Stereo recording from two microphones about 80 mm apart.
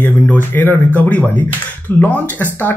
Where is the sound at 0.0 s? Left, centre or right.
Left.